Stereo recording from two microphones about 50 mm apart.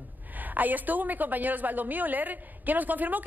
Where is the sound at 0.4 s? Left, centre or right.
Right.